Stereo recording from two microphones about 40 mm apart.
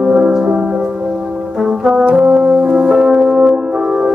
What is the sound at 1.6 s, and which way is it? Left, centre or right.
Brass instrument, centre.